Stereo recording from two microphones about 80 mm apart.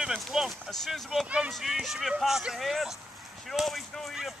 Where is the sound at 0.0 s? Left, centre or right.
Centre.